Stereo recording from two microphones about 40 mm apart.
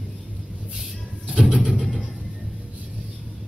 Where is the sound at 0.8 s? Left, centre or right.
Centre.